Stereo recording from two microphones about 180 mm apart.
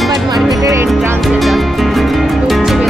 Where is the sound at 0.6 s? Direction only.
15° right (ahead or behind).